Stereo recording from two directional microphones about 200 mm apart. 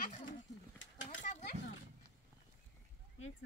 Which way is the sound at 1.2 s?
40° left (ahead or behind).